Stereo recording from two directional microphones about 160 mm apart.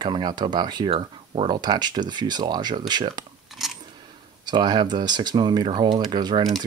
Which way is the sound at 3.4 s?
Centre (ahead or behind).